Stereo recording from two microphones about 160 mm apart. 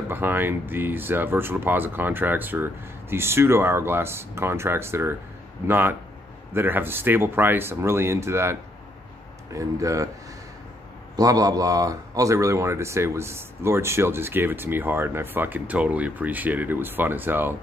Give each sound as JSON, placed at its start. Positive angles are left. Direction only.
{"t": 0.1, "sound": "speech", "side_deg": -10}
{"t": 11.1, "sound": "speech", "side_deg": -20}